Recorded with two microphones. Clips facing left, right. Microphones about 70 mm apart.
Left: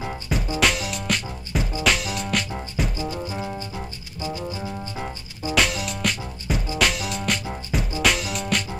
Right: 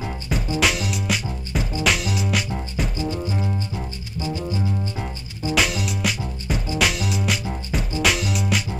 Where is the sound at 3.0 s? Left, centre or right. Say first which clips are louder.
Right 3 dB; left.